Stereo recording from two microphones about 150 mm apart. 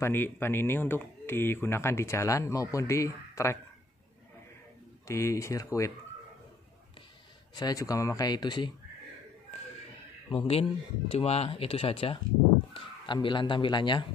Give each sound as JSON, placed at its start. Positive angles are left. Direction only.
{"t": 0.0, "sound": "speech", "side_deg": 15}
{"t": 5.0, "sound": "speech", "side_deg": 20}
{"t": 7.5, "sound": "speech", "side_deg": 25}
{"t": 10.3, "sound": "speech", "side_deg": 40}